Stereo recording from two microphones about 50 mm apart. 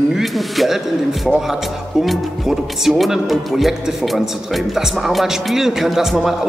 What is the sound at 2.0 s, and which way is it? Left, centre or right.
A man's voice, centre.